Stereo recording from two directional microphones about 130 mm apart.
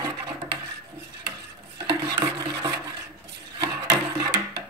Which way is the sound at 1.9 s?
35° right (ahead or behind).